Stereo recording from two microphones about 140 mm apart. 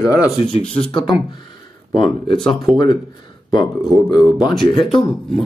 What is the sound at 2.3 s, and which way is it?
Speech, centre (ahead or behind).